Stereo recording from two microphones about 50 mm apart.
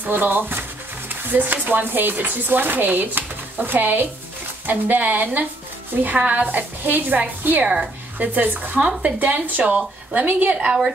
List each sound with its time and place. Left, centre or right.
0.0 s speech: right
7.6 s a woman's voice: centre
8.2 s speech: right